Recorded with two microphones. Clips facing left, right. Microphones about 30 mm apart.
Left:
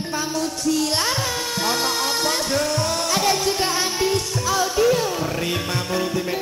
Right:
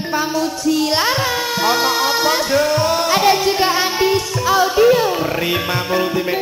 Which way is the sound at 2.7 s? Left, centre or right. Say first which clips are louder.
Right 6 dB; right.